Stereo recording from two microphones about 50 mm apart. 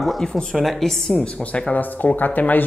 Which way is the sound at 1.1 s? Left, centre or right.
Left.